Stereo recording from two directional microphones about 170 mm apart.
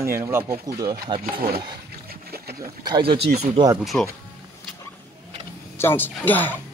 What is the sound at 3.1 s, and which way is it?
Speech, 40° right (ahead or behind).